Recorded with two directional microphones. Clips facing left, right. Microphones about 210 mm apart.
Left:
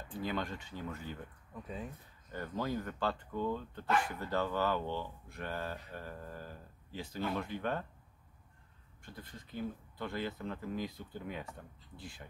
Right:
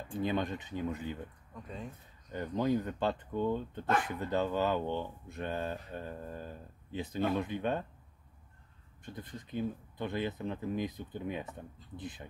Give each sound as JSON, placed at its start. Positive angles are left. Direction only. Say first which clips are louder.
{"t": 0.2, "sound": "speech", "louder": "right 5 dB", "side_deg": -20}
{"t": 1.5, "sound": "speech", "louder": "left 3 dB", "side_deg": 5}
{"t": 2.3, "sound": "speech", "louder": "right 6 dB", "side_deg": -20}
{"t": 9.0, "sound": "speech", "louder": "right 5 dB", "side_deg": -20}